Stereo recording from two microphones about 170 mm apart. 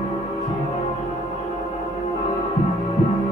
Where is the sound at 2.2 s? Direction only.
20° left (ahead or behind).